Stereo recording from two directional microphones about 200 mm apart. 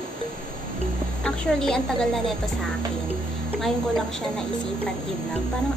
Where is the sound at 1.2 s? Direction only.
5° left (ahead or behind).